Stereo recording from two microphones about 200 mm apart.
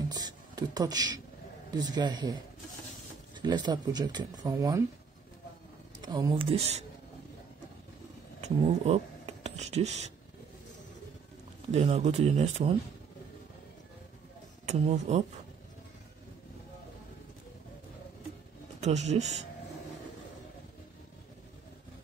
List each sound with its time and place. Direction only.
0.1 s beatboxing: 20° right (ahead or behind)
1.8 s speech: 20° right (ahead or behind)
3.3 s speech: 20° right (ahead or behind)
5.9 s speech: 20° right (ahead or behind)
8.4 s speech: 30° right (ahead or behind)
11.7 s speech: 30° right (ahead or behind)
14.7 s speech: 35° right (ahead or behind)
18.8 s speech: 35° right (ahead or behind)